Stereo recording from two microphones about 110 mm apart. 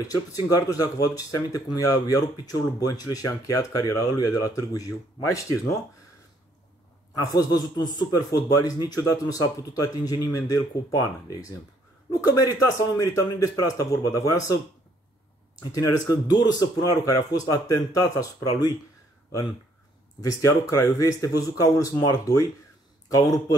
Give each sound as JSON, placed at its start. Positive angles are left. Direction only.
{"t": 0.1, "sound": "speech", "side_deg": 35}
{"t": 7.2, "sound": "speech", "side_deg": 35}
{"t": 15.6, "sound": "speech", "side_deg": 35}
{"t": 20.2, "sound": "speech", "side_deg": 30}